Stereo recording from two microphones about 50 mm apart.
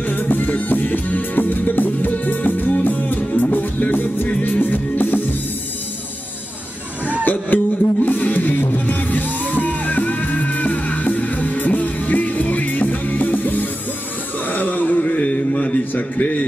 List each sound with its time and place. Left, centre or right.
0.0 s music: left
7.2 s music: left
14.4 s a sound: left